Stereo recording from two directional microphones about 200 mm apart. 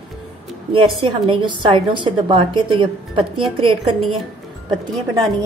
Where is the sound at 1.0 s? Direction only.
25° right (ahead or behind).